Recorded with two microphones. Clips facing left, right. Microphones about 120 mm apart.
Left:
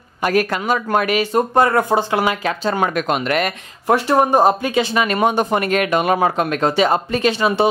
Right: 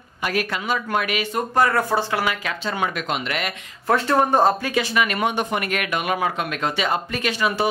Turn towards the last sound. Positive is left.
turn(degrees=30)  # may be behind; listen again after turning